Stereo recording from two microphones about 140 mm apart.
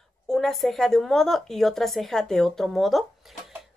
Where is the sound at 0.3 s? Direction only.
Centre (ahead or behind).